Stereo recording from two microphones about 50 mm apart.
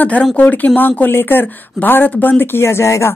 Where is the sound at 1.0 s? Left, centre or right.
Left.